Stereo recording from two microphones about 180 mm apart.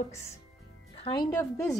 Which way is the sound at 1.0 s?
25° left (ahead or behind).